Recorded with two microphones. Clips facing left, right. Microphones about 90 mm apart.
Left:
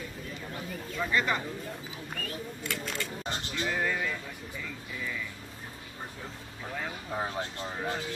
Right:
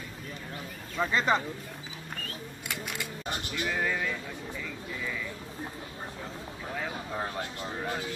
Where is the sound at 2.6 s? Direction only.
15° right (ahead or behind).